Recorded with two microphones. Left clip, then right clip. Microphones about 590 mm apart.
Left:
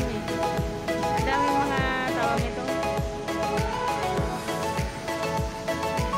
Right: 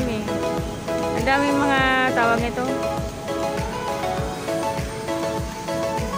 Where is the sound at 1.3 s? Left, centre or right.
Left.